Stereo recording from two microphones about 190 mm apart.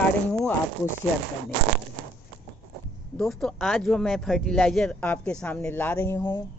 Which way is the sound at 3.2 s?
5° left (ahead or behind).